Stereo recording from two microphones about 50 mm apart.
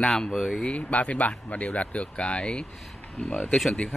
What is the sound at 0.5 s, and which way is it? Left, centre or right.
A man's voice, left.